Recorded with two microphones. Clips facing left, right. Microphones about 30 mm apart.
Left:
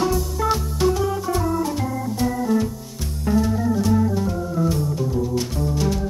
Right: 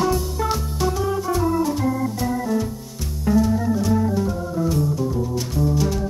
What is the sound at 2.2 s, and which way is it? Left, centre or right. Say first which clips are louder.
Organ: left 6 dB; centre.